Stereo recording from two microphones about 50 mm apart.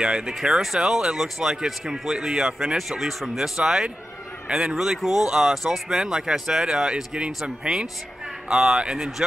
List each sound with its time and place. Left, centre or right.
0.0 s speech: centre
0.3 s speech: centre